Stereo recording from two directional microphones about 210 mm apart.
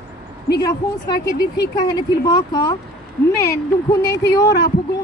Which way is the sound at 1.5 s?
20° left (ahead or behind).